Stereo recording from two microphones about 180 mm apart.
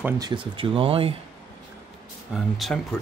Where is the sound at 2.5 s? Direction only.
Centre (ahead or behind).